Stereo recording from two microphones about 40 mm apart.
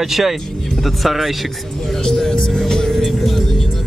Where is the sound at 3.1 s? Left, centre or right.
Centre.